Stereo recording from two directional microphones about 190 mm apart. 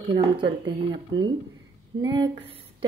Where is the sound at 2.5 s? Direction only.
30° right (ahead or behind).